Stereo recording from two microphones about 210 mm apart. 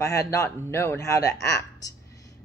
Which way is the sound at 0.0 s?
15° left (ahead or behind).